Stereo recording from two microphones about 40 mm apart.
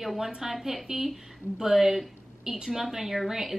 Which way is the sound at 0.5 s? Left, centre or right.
Centre.